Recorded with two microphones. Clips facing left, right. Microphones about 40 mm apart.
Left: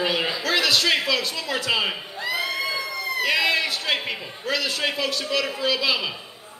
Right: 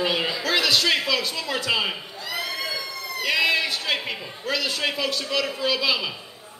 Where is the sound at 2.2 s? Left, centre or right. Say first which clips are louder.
Left 6 dB; left.